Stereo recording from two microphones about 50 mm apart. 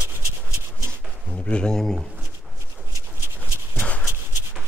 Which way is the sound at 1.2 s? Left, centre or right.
Left.